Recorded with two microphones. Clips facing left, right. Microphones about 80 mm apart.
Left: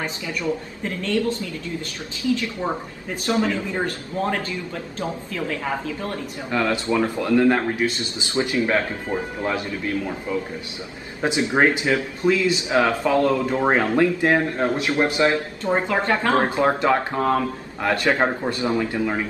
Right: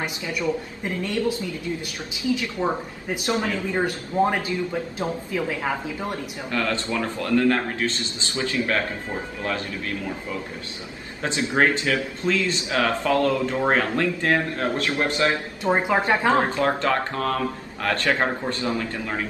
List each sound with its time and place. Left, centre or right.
0.4 s a man's voice: centre
2.6 s speech: centre
6.5 s speech: left
11.2 s speech: centre
15.3 s speech: centre
16.4 s speech: centre